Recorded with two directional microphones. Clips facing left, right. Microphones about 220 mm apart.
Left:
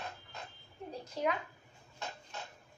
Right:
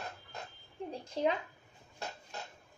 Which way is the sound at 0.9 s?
30° right (ahead or behind).